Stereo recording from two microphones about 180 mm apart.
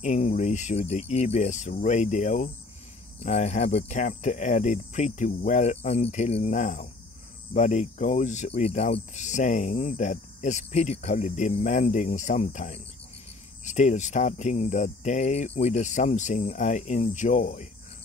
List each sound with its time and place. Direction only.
0.0 s speech: 40° left (ahead or behind)